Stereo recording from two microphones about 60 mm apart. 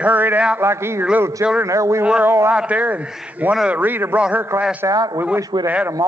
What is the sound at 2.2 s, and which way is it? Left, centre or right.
Speech, right.